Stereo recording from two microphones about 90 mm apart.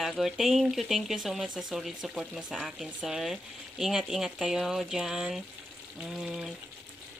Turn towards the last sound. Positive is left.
turn(degrees=-5)  # may be behind; listen again after turning